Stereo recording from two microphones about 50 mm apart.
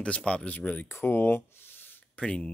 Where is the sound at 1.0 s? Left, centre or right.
Left.